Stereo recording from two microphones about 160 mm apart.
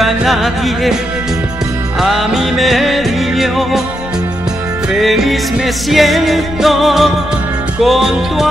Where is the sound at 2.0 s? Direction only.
Centre (ahead or behind).